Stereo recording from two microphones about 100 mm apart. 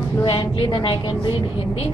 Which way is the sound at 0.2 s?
55° left (ahead or behind).